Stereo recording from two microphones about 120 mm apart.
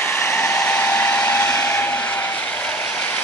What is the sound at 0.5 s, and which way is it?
Hair dryer, 15° left (ahead or behind).